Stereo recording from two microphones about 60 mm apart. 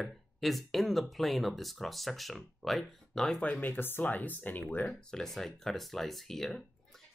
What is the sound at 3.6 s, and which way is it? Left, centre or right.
Speech, left.